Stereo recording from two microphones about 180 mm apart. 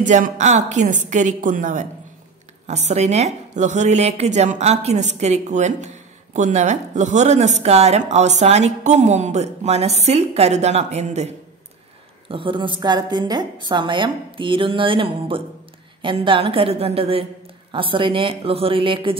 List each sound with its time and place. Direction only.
0.0 s a woman's voice: 45° right (ahead or behind)
12.3 s a woman's voice: 30° right (ahead or behind)